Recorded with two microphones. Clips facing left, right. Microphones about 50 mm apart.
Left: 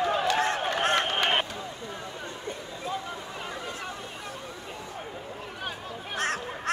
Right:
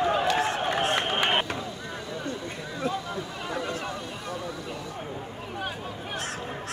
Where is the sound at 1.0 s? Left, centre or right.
Centre.